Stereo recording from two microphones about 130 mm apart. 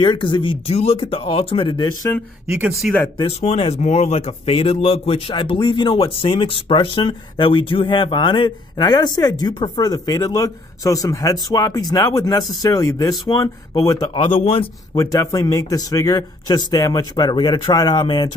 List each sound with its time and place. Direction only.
0.0 s speech: 40° left (ahead or behind)
2.4 s speech: 5° right (ahead or behind)
3.3 s a man's voice: 50° left (ahead or behind); by 14.1 s 30° left (ahead or behind)
14.4 s speech: 45° left (ahead or behind)
15.0 s speech: 25° left (ahead or behind)